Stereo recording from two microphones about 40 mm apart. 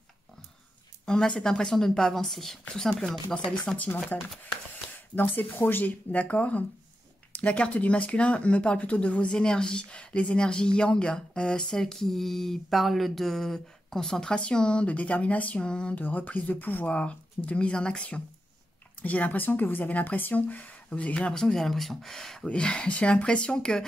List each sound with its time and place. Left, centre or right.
1.0 s speech: centre
3.7 s speech: left
5.1 s speech: left
9.4 s speech: left
14.9 s speech: left
15.6 s speech: left
16.0 s speech: left
16.9 s speech: left
18.9 s speech: left
21.5 s speech: centre
22.5 s speech: left